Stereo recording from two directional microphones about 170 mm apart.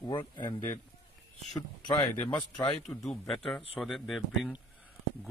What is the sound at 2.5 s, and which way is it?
Speech, 25° left (ahead or behind).